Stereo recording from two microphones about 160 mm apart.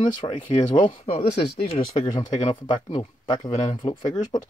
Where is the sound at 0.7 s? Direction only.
35° left (ahead or behind).